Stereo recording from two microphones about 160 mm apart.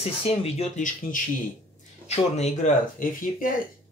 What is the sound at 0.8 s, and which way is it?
Speech, 55° left (ahead or behind).